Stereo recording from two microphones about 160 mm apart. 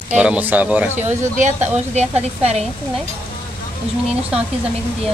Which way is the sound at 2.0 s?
45° right (ahead or behind).